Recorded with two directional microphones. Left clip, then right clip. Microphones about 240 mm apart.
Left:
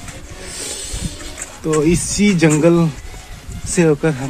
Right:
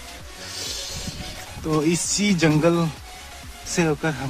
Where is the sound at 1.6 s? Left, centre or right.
Centre.